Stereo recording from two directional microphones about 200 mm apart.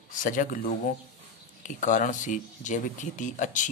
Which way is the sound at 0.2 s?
40° left (ahead or behind).